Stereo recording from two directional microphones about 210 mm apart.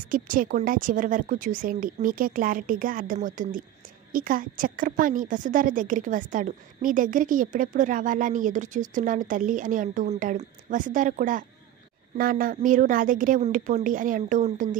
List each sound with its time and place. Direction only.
0.1 s a woman's voice: 40° right (ahead or behind)